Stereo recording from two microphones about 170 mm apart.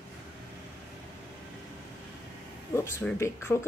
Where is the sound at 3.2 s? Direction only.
15° left (ahead or behind).